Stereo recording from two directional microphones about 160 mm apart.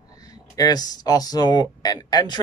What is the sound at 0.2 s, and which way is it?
Speech, 25° left (ahead or behind).